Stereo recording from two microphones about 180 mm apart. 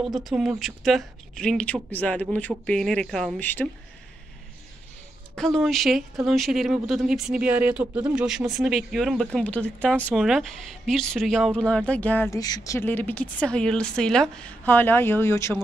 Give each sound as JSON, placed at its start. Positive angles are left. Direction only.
{"t": 0.0, "sound": "speech", "side_deg": 0}
{"t": 5.3, "sound": "speech", "side_deg": 0}